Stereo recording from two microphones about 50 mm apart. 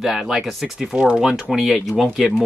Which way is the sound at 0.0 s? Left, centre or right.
Centre.